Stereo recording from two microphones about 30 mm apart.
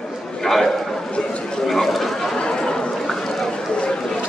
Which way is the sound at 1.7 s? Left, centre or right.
Centre.